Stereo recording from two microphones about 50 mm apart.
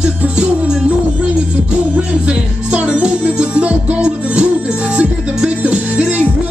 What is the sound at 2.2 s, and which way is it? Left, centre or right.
Music, right.